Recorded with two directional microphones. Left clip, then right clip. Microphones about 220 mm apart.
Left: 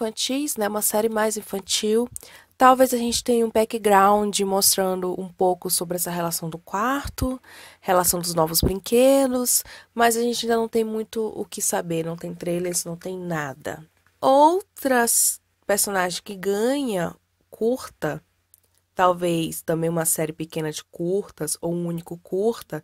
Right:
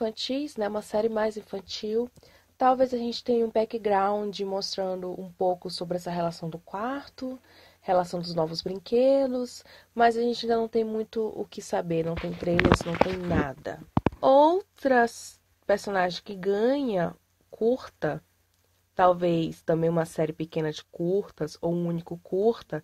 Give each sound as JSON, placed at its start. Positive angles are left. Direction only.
{"t": 0.0, "sound": "speech", "side_deg": 35}